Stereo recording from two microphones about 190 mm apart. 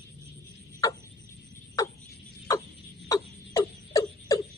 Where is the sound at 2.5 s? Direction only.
20° left (ahead or behind).